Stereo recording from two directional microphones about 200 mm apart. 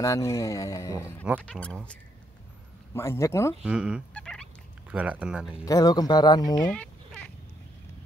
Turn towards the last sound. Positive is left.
turn(degrees=5)  # may be behind; listen again after turning